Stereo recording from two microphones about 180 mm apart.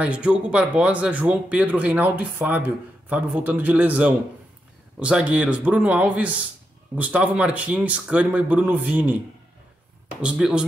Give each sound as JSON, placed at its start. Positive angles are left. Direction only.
{"t": 0.0, "sound": "speech", "side_deg": -5}
{"t": 10.2, "sound": "speech", "side_deg": -5}